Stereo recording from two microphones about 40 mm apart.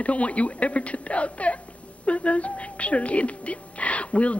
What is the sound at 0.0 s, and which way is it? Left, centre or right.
Speech, left.